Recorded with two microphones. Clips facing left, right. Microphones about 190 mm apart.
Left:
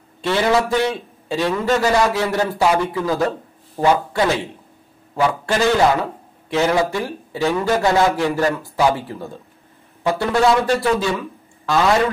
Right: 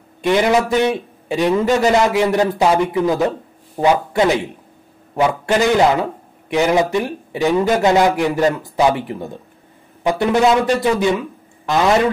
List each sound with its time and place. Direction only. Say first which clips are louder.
0.2 s a man's voice: right 3 dB; 15° right (ahead or behind)